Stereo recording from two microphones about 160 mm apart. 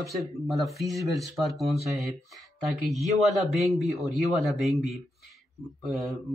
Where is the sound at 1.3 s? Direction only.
Centre (ahead or behind).